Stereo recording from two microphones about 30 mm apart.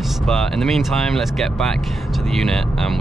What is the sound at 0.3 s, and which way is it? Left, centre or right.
Speech, centre.